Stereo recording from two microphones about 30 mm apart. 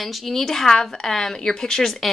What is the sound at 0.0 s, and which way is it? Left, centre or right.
Speech, centre.